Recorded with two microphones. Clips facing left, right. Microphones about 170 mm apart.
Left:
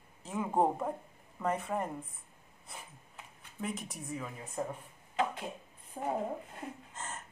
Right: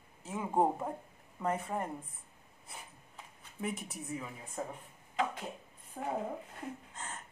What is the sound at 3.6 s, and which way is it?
Speech, 5° right (ahead or behind).